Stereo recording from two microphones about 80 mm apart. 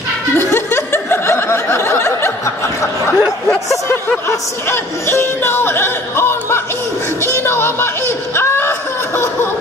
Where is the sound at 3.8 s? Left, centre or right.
Left.